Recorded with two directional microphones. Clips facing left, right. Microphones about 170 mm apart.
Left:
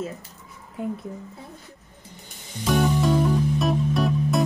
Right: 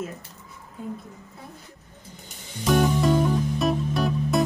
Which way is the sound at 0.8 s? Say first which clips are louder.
Left 5 dB; 70° left (ahead or behind).